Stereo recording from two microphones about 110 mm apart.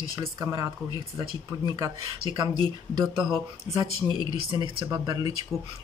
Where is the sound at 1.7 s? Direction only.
40° right (ahead or behind).